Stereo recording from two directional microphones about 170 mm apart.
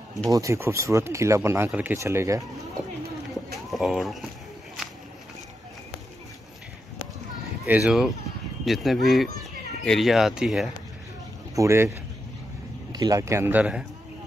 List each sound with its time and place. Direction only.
0.3 s speech: 20° right (ahead or behind)
3.5 s speech: centre (ahead or behind)
7.6 s speech: 10° right (ahead or behind)
11.5 s speech: 15° right (ahead or behind)
12.9 s speech: 20° right (ahead or behind)